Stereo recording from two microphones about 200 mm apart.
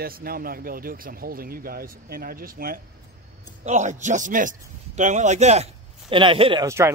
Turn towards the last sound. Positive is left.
turn(degrees=-15)  # may be behind; listen again after turning